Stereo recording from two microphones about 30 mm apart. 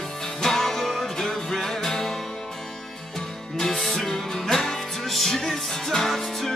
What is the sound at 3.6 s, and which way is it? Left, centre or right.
Music, centre.